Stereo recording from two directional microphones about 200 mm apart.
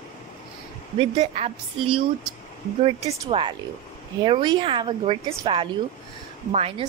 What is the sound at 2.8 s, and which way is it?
A woman's voice, 25° right (ahead or behind).